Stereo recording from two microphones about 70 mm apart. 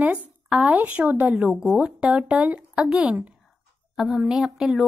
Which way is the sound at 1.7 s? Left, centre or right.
Centre.